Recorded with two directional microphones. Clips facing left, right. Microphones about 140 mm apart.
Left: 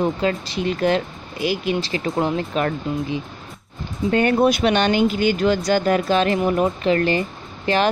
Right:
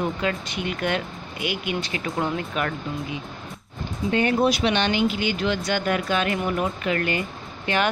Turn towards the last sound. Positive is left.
turn(degrees=35)  # may be behind; listen again after turning